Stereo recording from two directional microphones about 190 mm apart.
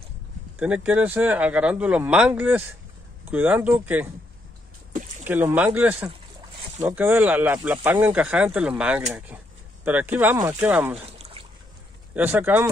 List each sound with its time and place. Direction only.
0.6 s speech: 5° right (ahead or behind)
4.9 s a sound: 40° right (ahead or behind)
5.2 s speech: 10° right (ahead or behind)
6.8 s speech: 10° right (ahead or behind)
11.1 s a sound: 35° right (ahead or behind)
12.1 s speech: 10° right (ahead or behind)